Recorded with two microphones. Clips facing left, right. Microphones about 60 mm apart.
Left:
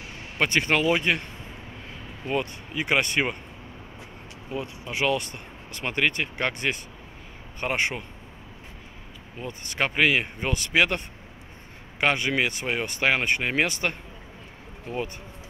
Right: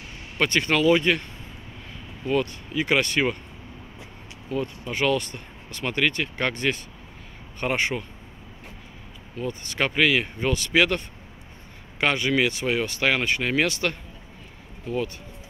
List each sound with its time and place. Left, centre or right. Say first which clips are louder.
0.4 s speech: right 1 dB; centre
2.2 s speech: right 4 dB; centre
4.5 s speech: right 4 dB; centre
9.4 s speech: right 2 dB; centre